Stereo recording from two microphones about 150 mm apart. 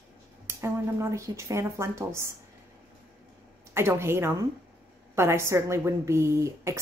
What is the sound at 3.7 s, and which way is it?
A woman's voice, 15° right (ahead or behind).